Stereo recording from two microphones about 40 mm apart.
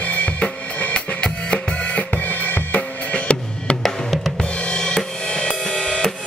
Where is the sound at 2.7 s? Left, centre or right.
Left.